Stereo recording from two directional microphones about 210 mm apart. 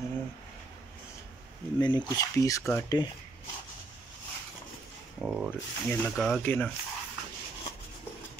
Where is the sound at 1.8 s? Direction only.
20° left (ahead or behind).